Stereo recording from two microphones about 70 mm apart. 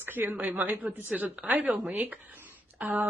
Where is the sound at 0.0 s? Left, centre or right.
Right.